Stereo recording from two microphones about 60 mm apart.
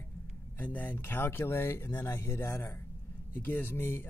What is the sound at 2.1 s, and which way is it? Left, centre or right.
Speech, left.